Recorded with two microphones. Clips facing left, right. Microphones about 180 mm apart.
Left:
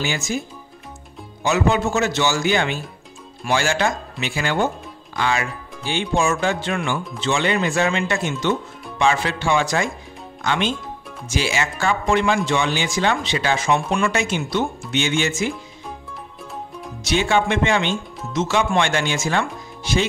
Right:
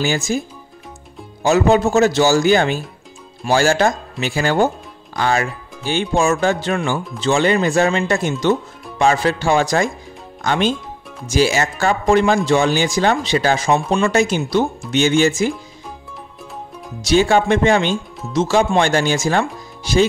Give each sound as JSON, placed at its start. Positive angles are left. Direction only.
{"t": 0.0, "sound": "speech", "side_deg": -40}
{"t": 1.4, "sound": "speech", "side_deg": -35}
{"t": 17.0, "sound": "speech", "side_deg": -35}